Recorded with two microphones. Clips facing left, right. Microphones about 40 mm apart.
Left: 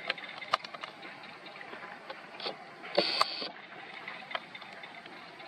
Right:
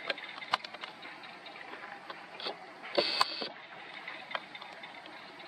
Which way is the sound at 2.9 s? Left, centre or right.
Right.